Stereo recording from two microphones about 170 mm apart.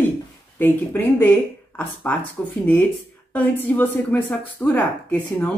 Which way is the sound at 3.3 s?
10° left (ahead or behind).